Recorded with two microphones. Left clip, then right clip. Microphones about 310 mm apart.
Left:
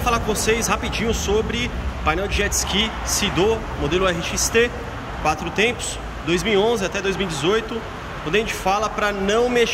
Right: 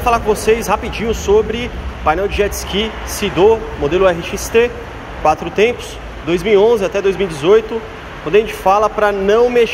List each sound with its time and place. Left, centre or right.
0.0 s speech: centre